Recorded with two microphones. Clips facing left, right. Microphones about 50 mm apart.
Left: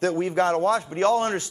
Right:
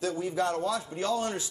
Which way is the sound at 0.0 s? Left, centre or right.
Left.